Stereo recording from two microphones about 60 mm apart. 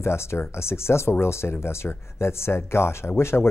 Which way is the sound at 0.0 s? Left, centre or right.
Left.